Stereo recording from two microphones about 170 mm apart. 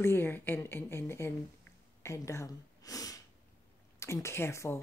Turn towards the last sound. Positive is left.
turn(degrees=15)  # may be behind; listen again after turning